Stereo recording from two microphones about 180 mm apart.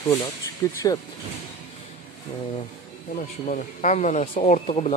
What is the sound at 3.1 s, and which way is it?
Speech, 45° left (ahead or behind).